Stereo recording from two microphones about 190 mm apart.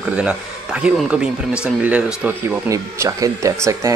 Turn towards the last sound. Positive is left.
turn(degrees=-15)  # may be behind; listen again after turning